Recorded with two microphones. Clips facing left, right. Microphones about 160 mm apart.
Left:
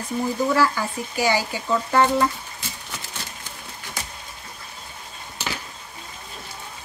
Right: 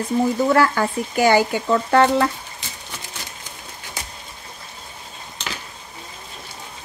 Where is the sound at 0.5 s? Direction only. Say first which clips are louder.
Right 4 dB; 60° right (ahead or behind).